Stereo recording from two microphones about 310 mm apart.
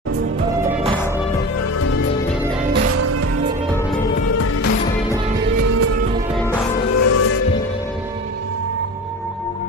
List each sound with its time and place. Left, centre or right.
3.0 s music: right
5.6 s music: right
7.0 s music: left